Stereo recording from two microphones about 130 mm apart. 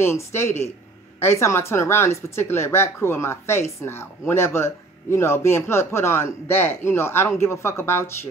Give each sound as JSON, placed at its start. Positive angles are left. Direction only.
{"t": 0.0, "sound": "speech", "side_deg": 20}